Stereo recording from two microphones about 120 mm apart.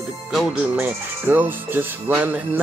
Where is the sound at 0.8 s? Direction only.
15° right (ahead or behind).